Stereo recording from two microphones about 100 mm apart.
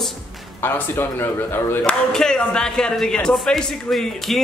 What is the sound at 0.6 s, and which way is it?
Speech, 20° left (ahead or behind).